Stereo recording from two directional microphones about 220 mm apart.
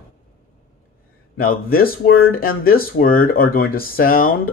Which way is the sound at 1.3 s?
40° left (ahead or behind).